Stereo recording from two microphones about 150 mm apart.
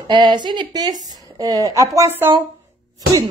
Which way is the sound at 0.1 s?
30° right (ahead or behind).